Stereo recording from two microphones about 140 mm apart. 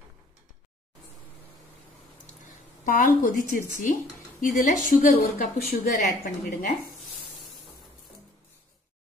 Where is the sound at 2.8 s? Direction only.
75° left (ahead or behind).